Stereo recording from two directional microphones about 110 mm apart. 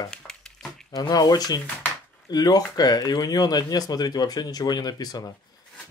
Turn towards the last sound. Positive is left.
turn(degrees=35)  # may be behind; listen again after turning